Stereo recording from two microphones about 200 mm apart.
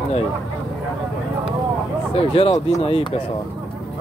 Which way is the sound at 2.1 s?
30° left (ahead or behind).